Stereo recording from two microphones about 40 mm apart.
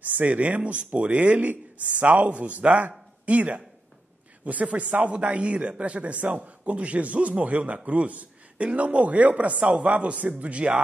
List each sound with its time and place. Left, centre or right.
0.0 s a man's voice: right
1.5 s a man's voice: right